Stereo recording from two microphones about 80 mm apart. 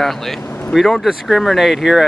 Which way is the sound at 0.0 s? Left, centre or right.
Centre.